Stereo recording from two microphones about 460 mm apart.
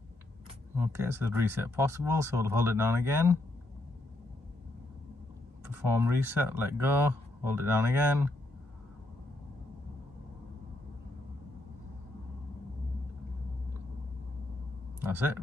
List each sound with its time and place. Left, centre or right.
0.7 s speech: centre
5.7 s speech: centre
15.0 s a sound: centre